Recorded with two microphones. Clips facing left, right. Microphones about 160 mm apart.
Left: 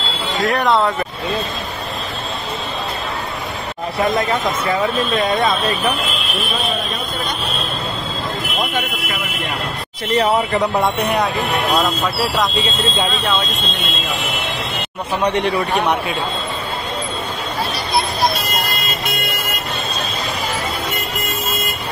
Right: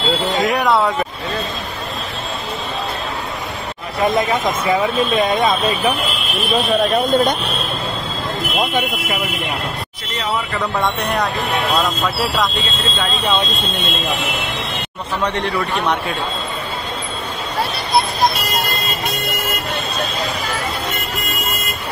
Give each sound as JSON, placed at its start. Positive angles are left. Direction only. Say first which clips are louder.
{"t": 0.4, "sound": "speech", "louder": "left 2 dB", "side_deg": -15}
{"t": 4.6, "sound": "speech", "louder": "right 3 dB", "side_deg": -15}
{"t": 10.5, "sound": "speech", "louder": "left 3 dB", "side_deg": 15}
{"t": 11.0, "sound": "speech", "louder": "left 2 dB", "side_deg": 0}
{"t": 15.2, "sound": "speech", "louder": "left 4 dB", "side_deg": 15}